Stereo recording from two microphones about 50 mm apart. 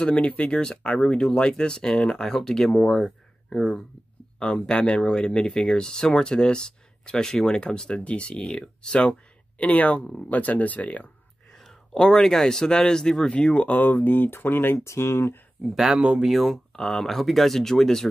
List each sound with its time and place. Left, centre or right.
0.0 s speech: left
9.6 s speech: left
11.5 s speech: centre; by 13.7 s left
13.7 s speech: left
14.9 s speech: left
15.7 s speech: centre
16.7 s speech: centre